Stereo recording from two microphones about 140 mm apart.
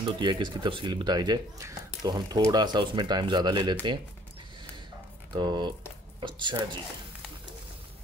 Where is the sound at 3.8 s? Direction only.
35° right (ahead or behind).